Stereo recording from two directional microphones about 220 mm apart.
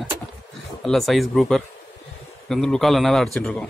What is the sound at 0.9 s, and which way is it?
A man's voice, centre (ahead or behind).